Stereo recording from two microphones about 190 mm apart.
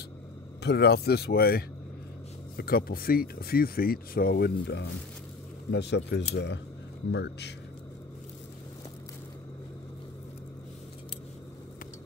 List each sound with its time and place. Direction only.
0.6 s speech: 60° left (ahead or behind)